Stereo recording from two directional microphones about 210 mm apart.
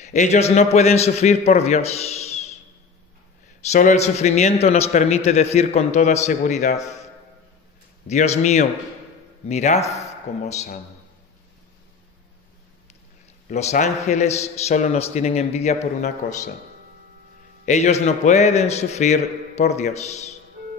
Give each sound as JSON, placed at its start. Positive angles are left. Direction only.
{"t": 0.0, "sound": "a man's voice", "side_deg": 35}
{"t": 3.7, "sound": "a man's voice", "side_deg": 30}
{"t": 8.1, "sound": "a man's voice", "side_deg": 35}
{"t": 13.5, "sound": "a man's voice", "side_deg": 35}
{"t": 17.6, "sound": "a man's voice", "side_deg": 35}